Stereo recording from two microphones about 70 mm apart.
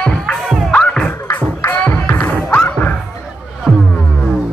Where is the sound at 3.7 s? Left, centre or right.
Centre.